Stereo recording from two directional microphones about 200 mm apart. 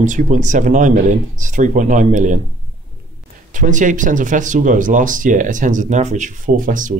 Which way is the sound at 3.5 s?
40° right (ahead or behind).